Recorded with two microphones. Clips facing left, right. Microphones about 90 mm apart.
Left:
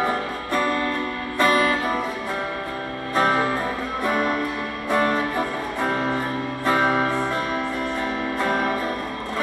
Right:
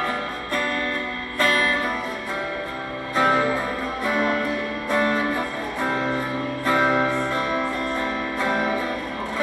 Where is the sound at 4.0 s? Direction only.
15° left (ahead or behind); by 8.8 s centre (ahead or behind).